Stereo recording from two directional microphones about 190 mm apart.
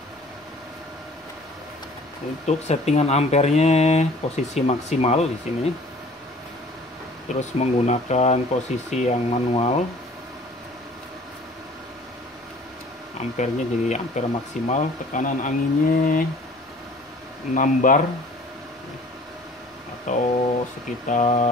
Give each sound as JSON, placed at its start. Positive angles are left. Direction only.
{"t": 2.4, "sound": "speech", "side_deg": 35}
{"t": 7.3, "sound": "speech", "side_deg": 35}
{"t": 13.4, "sound": "speech", "side_deg": 40}
{"t": 17.6, "sound": "speech", "side_deg": 45}
{"t": 20.1, "sound": "speech", "side_deg": 40}